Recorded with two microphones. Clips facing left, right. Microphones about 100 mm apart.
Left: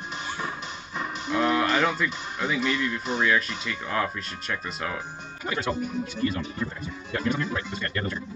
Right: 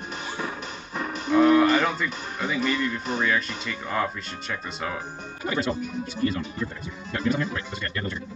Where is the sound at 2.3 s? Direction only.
Centre (ahead or behind).